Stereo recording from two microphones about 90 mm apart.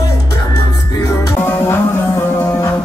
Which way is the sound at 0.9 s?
45° left (ahead or behind).